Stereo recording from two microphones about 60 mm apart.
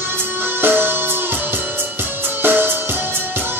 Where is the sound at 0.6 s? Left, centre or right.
Right.